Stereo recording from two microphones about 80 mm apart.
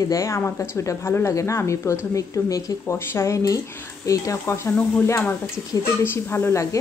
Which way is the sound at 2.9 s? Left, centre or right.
Left.